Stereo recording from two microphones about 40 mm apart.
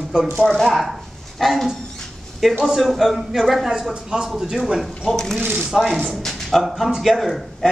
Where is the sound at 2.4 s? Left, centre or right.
Centre.